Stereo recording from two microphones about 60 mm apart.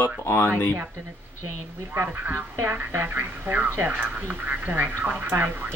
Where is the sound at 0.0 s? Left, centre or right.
Left.